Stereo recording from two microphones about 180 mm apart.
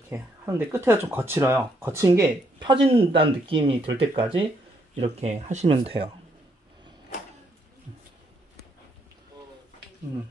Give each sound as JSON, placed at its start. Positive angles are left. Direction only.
{"t": 0.1, "sound": "speech", "side_deg": -15}